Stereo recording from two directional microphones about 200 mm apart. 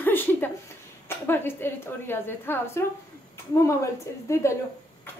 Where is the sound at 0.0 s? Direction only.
10° left (ahead or behind).